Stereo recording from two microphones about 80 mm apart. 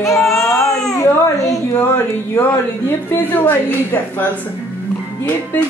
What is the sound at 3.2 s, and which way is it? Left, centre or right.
A woman's voice, left.